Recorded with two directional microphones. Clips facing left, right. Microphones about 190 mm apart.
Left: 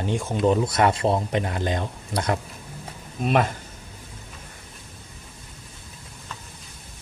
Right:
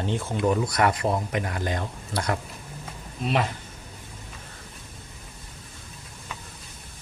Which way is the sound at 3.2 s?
50° left (ahead or behind).